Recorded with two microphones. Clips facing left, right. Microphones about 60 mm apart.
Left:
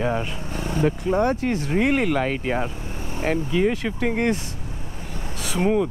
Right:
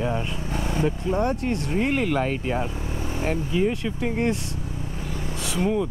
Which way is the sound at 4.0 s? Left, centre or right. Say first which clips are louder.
Left 2 dB; left.